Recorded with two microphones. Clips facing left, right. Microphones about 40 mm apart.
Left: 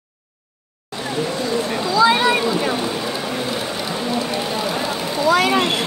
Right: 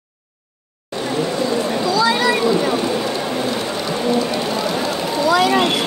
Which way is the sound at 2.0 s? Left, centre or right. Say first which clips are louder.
Left 3 dB; left.